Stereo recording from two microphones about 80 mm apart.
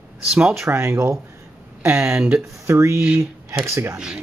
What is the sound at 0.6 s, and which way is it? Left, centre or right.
Speech, right.